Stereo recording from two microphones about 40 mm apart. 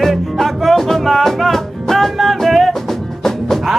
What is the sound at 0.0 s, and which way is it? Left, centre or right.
Music, centre.